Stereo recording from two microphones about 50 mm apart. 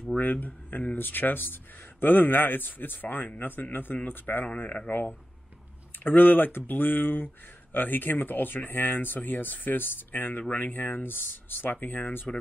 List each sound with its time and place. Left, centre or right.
0.2 s speech: left
4.6 s speech: left
6.0 s speech: left